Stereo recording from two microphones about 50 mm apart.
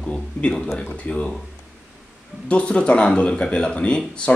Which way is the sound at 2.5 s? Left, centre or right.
Left.